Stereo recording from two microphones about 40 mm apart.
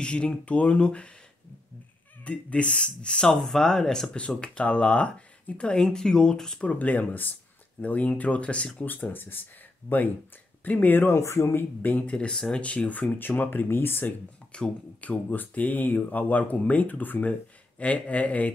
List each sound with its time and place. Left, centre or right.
0.0 s speech: left
2.2 s speech: left
3.3 s speech: centre
4.4 s speech: left
6.6 s speech: left
8.8 s speech: left
10.6 s speech: left
11.8 s speech: left
12.2 s speech: centre
12.5 s speech: left
13.2 s speech: left
14.5 s speech: left
15.0 s speech: left